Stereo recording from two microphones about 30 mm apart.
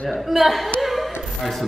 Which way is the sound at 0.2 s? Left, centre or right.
Centre.